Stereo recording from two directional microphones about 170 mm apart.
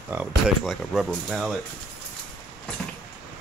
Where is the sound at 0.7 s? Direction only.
Centre (ahead or behind).